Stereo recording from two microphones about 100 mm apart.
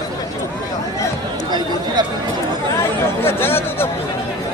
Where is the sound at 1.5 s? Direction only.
45° right (ahead or behind).